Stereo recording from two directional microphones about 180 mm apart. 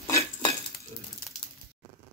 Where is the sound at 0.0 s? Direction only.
20° left (ahead or behind).